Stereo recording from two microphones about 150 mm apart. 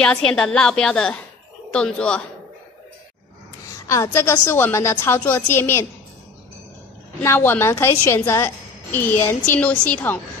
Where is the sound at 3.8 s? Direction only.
20° left (ahead or behind).